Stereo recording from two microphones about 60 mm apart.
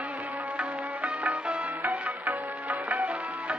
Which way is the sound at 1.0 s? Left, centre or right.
Right.